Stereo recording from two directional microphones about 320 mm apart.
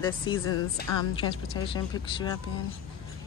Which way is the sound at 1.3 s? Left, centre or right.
Centre.